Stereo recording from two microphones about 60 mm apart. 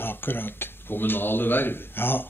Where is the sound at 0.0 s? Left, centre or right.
Left.